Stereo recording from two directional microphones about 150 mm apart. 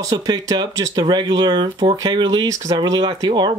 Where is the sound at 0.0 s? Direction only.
25° right (ahead or behind).